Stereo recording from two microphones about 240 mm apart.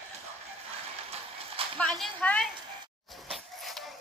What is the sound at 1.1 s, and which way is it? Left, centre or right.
Horse, right.